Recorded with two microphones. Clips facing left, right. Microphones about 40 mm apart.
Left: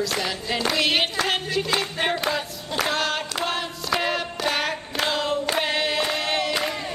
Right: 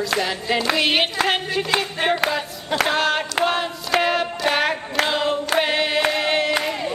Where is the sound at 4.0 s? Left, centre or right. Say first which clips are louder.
Right 7 dB; centre.